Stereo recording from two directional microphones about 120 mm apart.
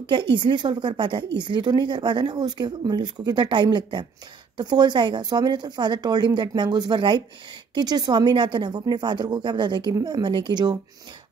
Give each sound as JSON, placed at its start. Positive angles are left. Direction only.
{"t": 0.0, "sound": "a woman's voice", "side_deg": -40}